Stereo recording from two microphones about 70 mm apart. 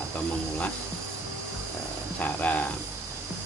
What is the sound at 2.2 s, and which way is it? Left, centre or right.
Music, left.